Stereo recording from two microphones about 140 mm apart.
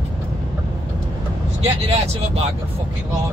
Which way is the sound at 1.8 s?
45° right (ahead or behind).